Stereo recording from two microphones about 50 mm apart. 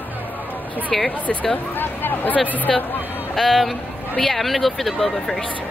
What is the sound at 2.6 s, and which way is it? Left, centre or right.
Speech, left.